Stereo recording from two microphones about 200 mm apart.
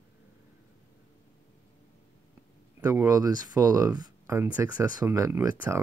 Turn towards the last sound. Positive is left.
turn(degrees=-15)  # may be behind; listen again after turning